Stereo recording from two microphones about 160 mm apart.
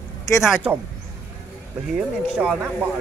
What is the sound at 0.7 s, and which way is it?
Speech, 5° right (ahead or behind).